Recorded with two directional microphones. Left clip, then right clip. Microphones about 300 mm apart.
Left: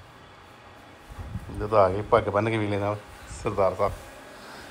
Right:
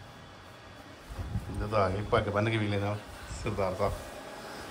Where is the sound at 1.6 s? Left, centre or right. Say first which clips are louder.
Left 8 dB; centre.